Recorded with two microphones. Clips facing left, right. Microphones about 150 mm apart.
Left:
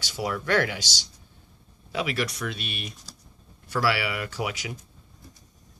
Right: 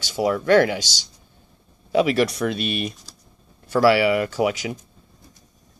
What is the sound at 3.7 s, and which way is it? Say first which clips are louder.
Speech: right 10 dB; 25° right (ahead or behind).